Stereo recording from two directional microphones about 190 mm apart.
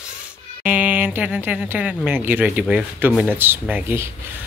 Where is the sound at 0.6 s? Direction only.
10° right (ahead or behind).